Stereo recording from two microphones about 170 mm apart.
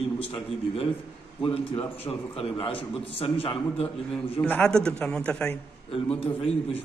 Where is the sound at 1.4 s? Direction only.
35° left (ahead or behind).